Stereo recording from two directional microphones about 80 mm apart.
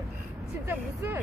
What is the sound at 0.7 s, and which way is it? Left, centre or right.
Speech, right.